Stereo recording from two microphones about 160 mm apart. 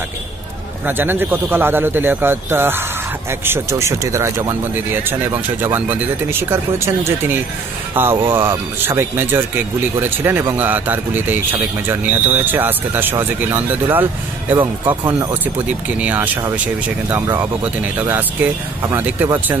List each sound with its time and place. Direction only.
0.8 s speech: 15° right (ahead or behind)